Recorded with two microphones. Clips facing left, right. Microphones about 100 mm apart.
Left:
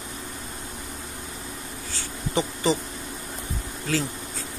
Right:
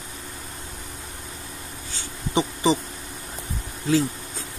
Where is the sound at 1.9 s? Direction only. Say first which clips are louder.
Right 2 dB; 20° right (ahead or behind).